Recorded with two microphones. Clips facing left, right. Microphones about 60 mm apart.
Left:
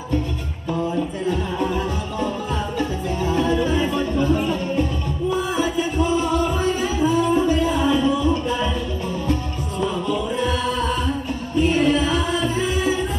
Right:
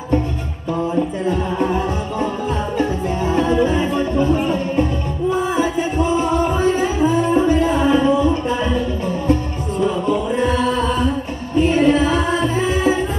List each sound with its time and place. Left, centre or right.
1.2 s music: right
2.8 s music: right
11.5 s music: right